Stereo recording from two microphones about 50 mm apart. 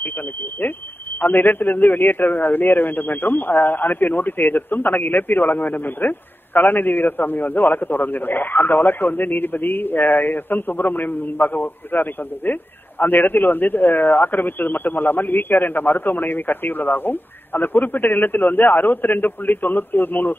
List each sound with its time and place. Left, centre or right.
0.0 s alarm: left
1.2 s a man's voice: left